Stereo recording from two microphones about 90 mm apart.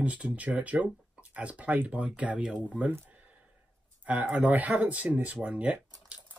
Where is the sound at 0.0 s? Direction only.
15° right (ahead or behind).